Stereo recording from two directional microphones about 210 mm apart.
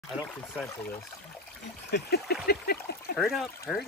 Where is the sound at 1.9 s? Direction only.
50° left (ahead or behind).